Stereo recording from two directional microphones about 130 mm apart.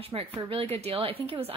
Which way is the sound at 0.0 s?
45° right (ahead or behind).